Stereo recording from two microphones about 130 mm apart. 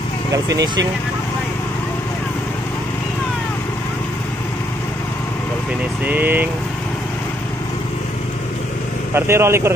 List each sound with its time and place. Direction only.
0.3 s speech: 25° right (ahead or behind)
6.0 s speech: 15° right (ahead or behind)
9.1 s speech: 20° right (ahead or behind)